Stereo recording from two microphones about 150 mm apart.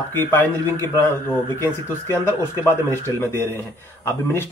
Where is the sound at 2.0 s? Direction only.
15° left (ahead or behind).